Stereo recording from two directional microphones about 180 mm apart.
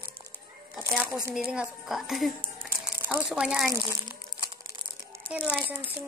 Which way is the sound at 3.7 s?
25° right (ahead or behind).